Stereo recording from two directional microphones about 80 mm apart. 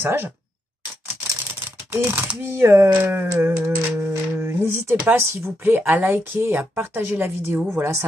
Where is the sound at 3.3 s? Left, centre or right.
Right.